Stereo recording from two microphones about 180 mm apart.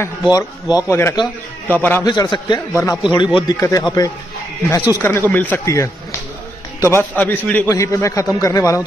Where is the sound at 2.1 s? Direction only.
25° left (ahead or behind).